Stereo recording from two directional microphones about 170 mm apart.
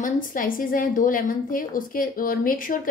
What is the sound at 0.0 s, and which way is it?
A woman's voice, 55° left (ahead or behind).